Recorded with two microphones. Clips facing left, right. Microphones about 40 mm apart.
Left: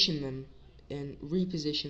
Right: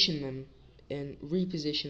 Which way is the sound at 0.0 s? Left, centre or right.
Centre.